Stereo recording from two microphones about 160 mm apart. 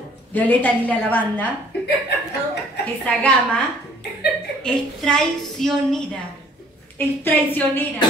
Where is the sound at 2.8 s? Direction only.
10° left (ahead or behind).